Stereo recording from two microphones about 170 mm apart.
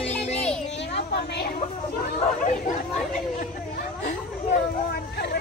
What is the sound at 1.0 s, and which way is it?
Speech, 75° left (ahead or behind).